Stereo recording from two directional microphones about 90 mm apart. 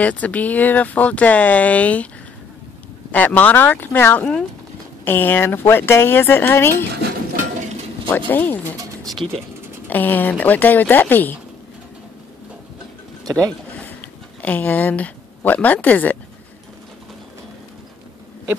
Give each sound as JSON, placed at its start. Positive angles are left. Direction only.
{"t": 0.0, "sound": "speech", "side_deg": 15}
{"t": 3.1, "sound": "speech", "side_deg": 20}
{"t": 8.3, "sound": "speech", "side_deg": 20}
{"t": 9.8, "sound": "speech", "side_deg": 20}
{"t": 13.2, "sound": "speech", "side_deg": -40}
{"t": 14.4, "sound": "speech", "side_deg": 20}